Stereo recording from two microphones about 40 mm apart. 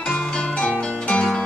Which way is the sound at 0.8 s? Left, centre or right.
Left.